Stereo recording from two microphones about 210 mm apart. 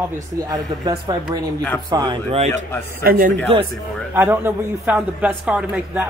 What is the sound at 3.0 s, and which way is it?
Speech, 45° right (ahead or behind).